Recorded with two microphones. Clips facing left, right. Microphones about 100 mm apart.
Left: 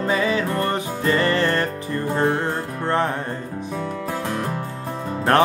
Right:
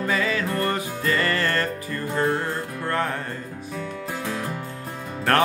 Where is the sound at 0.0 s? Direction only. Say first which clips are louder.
Left 3 dB; 20° left (ahead or behind).